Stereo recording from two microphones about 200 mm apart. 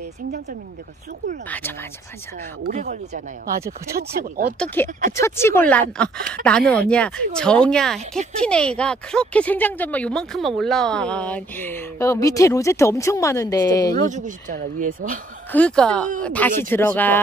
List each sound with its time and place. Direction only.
2.7 s speech: 40° right (ahead or behind)
3.9 s speech: 50° right (ahead or behind)
4.8 s speech: 10° left (ahead or behind)
14.0 s speech: 40° right (ahead or behind)
15.5 s speech: 5° left (ahead or behind)